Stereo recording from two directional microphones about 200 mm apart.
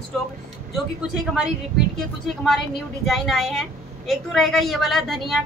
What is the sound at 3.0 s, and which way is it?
A woman's voice, centre (ahead or behind).